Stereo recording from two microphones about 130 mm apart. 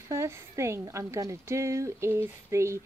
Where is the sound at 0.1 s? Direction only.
20° right (ahead or behind).